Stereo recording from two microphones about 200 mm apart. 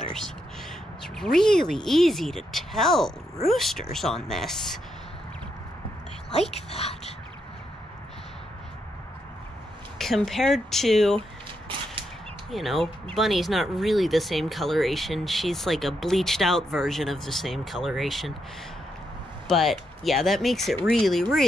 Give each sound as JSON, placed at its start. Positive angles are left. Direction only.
{"t": 1.0, "sound": "speech", "side_deg": 0}
{"t": 6.3, "sound": "a sound", "side_deg": 30}
{"t": 9.9, "sound": "speech", "side_deg": 0}
{"t": 12.4, "sound": "speech", "side_deg": 0}
{"t": 19.4, "sound": "speech", "side_deg": 0}